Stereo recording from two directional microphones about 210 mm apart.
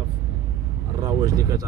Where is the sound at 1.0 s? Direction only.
15° right (ahead or behind).